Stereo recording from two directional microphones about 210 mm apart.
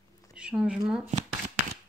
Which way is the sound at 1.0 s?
35° right (ahead or behind).